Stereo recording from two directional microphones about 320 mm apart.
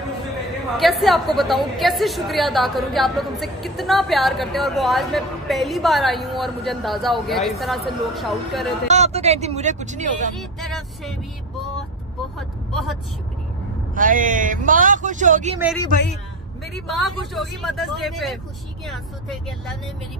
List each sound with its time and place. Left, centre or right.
0.7 s a woman's voice: centre
8.8 s speech: right
10.6 s speech: centre
13.9 s speech: right
16.7 s a woman's voice: centre